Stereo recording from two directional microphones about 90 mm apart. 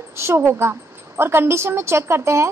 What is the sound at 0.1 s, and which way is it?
A woman's voice, 30° right (ahead or behind).